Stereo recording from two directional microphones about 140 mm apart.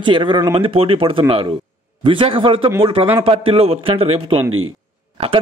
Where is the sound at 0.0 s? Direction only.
35° right (ahead or behind).